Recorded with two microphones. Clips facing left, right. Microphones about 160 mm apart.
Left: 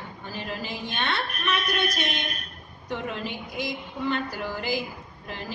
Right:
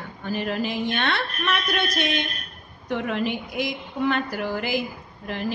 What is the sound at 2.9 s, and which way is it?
A woman's voice, 70° right (ahead or behind).